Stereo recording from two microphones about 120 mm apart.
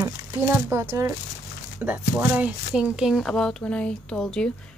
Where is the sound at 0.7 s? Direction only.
20° right (ahead or behind).